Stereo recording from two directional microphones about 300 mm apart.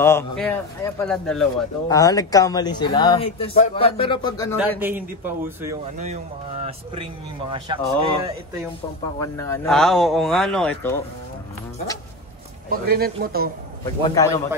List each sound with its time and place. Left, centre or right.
0.0 s speech: centre
4.6 s speech: centre
5.9 s speech: right
9.2 s speech: centre
12.6 s a man's voice: right
13.8 s speech: centre